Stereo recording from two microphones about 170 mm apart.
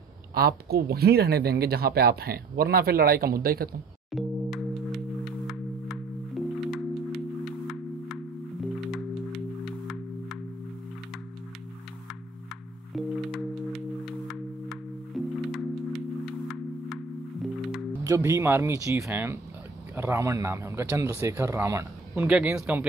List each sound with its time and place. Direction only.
0.3 s speech: 65° right (ahead or behind)
4.1 s singing bowl: centre (ahead or behind)
8.1 s music: centre (ahead or behind)
12.9 s singing bowl: centre (ahead or behind)
16.9 s music: centre (ahead or behind)
18.0 s speech: 20° right (ahead or behind)
22.1 s speech: 10° right (ahead or behind)